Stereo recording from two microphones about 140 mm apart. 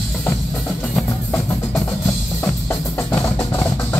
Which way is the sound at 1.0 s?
15° left (ahead or behind).